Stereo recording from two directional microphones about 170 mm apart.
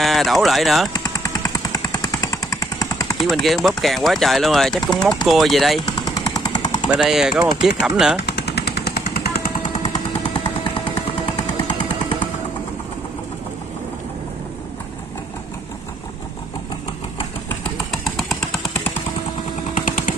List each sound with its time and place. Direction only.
0.0 s speech: centre (ahead or behind)
0.9 s jackhammer: 20° left (ahead or behind)
3.3 s speech: centre (ahead or behind)
5.9 s jackhammer: 20° left (ahead or behind)
7.0 s speech: 5° right (ahead or behind)
8.2 s jackhammer: 75° left (ahead or behind)
17.9 s vehicle: centre (ahead or behind)
19.7 s a sound: 50° left (ahead or behind)